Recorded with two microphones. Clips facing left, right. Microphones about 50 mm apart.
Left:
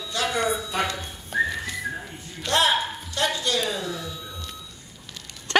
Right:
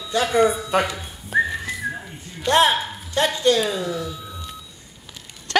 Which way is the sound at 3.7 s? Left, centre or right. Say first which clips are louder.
Right 5 dB; centre.